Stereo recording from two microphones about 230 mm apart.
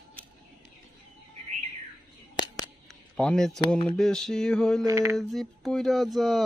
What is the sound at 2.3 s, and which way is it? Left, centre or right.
Scissors, centre.